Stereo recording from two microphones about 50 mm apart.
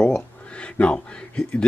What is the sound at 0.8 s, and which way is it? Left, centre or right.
Speech, left.